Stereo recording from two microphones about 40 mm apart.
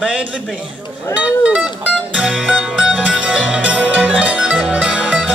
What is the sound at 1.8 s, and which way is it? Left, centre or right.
Music, right.